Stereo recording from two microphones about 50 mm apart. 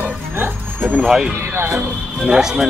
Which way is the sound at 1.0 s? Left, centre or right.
Centre.